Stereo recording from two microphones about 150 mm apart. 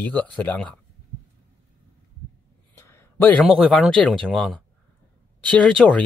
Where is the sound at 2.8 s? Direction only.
15° left (ahead or behind).